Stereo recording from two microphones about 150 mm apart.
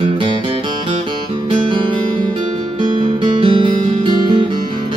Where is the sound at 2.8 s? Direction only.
30° right (ahead or behind).